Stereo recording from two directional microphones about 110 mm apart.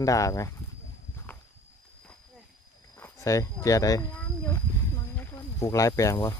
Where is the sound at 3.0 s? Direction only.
25° left (ahead or behind).